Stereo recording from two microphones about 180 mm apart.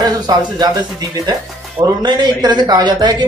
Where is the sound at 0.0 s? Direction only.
20° right (ahead or behind).